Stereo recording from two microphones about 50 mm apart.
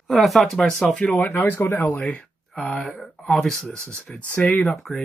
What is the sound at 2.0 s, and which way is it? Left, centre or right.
Speech, left.